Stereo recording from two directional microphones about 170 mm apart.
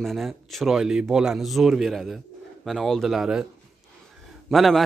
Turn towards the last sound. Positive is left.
turn(degrees=0)  # may be behind; listen again after turning